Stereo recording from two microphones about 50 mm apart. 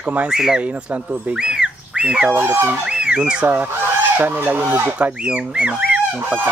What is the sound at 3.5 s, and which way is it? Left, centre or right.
Fowl, right.